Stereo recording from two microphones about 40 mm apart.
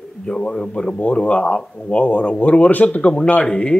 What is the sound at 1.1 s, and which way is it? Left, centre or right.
A man's voice, left.